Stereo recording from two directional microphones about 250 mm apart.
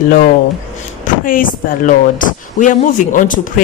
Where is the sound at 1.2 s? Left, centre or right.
Left.